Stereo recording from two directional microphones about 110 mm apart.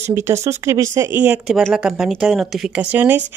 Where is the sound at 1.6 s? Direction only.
5° right (ahead or behind).